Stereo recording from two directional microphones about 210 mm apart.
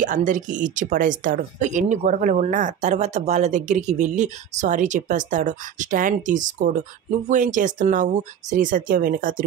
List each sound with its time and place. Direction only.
0.0 s speech: 40° right (ahead or behind)